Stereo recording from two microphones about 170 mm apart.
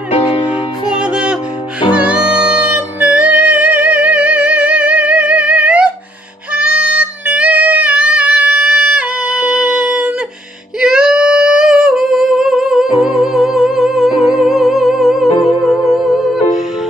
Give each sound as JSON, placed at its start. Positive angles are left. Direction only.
{"t": 0.1, "sound": "music", "side_deg": 35}
{"t": 0.9, "sound": "music", "side_deg": -5}
{"t": 6.5, "sound": "a sound", "side_deg": -10}
{"t": 10.8, "sound": "singing", "side_deg": -5}
{"t": 13.0, "sound": "music", "side_deg": 0}